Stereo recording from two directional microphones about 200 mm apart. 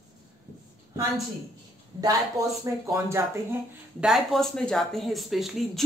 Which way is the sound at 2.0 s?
15° right (ahead or behind).